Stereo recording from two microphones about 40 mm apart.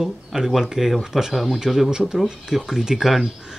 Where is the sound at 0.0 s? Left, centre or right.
Centre.